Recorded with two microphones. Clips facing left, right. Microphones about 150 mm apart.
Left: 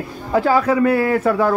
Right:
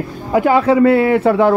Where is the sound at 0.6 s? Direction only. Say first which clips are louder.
Right 5 dB; 30° right (ahead or behind).